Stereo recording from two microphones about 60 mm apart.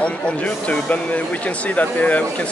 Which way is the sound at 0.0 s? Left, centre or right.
Left.